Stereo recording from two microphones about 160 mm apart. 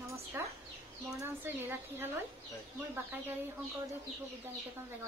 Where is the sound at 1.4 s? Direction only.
15° right (ahead or behind).